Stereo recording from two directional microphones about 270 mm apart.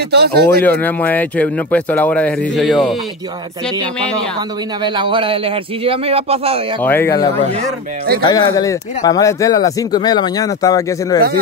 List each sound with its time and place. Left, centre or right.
0.1 s speech: right
0.7 s speech: centre
4.8 s speech: centre
6.8 s speech: centre
8.3 s speech: centre